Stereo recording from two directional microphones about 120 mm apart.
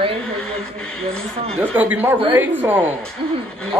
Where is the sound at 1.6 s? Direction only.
15° right (ahead or behind).